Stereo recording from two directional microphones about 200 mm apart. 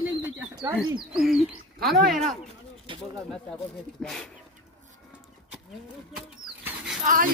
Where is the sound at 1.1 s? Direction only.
Centre (ahead or behind).